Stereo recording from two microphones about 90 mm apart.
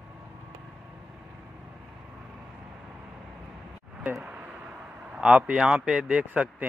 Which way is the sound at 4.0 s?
15° right (ahead or behind).